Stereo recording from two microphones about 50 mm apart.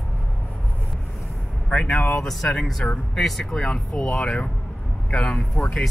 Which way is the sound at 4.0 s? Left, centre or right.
Centre.